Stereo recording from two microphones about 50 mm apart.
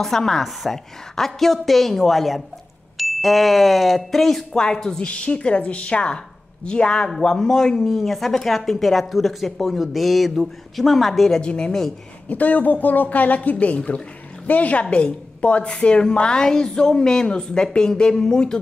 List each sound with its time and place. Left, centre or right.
0.0 s speech: centre
11.4 s speech: centre
12.3 s speech: left; by 18.6 s centre